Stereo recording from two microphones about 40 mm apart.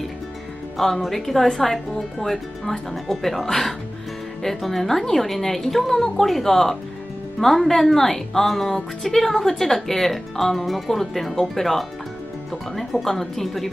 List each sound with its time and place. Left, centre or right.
0.7 s speech: centre